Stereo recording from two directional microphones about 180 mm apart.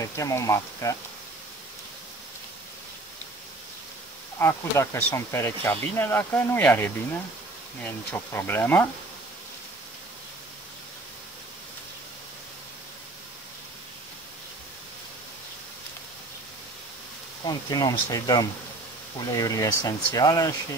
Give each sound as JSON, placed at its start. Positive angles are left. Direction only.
{"t": 0.0, "sound": "speech", "side_deg": 15}
{"t": 4.4, "sound": "speech", "side_deg": 15}
{"t": 17.5, "sound": "speech", "side_deg": 20}